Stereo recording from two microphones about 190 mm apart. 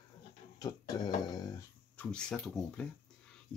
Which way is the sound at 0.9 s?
20° left (ahead or behind).